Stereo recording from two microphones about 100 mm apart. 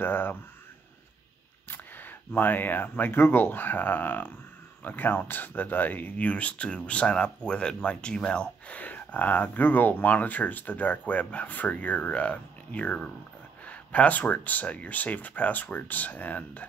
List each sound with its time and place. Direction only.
0.0 s speech: 20° left (ahead or behind)
1.7 s speech: 20° left (ahead or behind)